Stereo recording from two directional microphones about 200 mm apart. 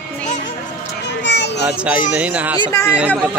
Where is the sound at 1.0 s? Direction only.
60° left (ahead or behind).